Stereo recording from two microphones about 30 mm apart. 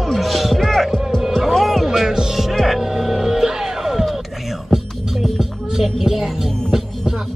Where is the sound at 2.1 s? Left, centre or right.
Centre.